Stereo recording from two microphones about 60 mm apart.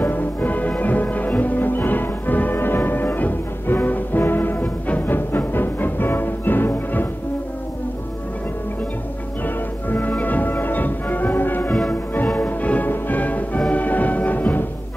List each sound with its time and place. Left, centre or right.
0.0 s music: left
9.8 s music: left